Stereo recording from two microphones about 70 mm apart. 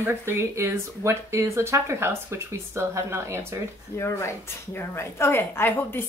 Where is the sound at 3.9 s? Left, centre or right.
Left.